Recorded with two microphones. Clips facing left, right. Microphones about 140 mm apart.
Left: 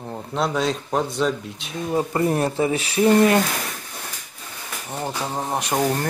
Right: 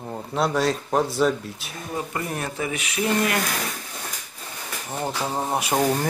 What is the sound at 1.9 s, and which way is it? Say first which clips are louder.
Speech: left 8 dB; 30° left (ahead or behind).